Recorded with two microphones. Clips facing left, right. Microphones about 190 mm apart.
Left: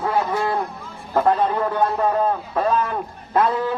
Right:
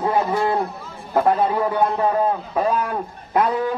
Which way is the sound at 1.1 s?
10° right (ahead or behind).